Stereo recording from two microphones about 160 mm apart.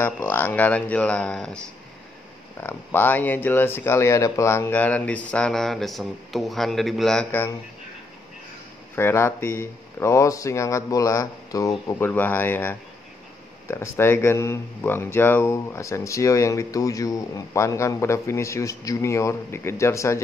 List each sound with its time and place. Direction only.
0.0 s speech: 10° left (ahead or behind)
2.6 s speech: 10° left (ahead or behind)
8.9 s speech: 15° left (ahead or behind)